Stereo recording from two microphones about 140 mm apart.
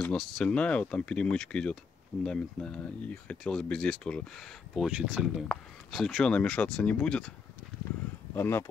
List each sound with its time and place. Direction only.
0.0 s speech: 5° left (ahead or behind)
8.4 s speech: 15° left (ahead or behind)